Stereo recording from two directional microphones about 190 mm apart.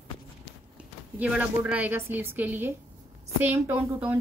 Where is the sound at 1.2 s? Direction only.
5° right (ahead or behind).